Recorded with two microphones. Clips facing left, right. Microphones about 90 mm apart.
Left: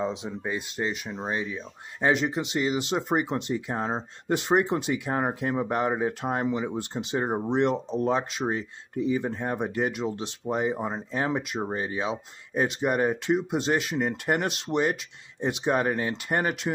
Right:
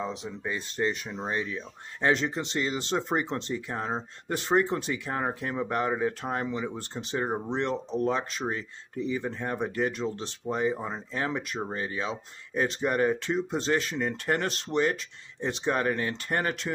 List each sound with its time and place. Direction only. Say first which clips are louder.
0.0 s speech: left 4 dB; 20° left (ahead or behind)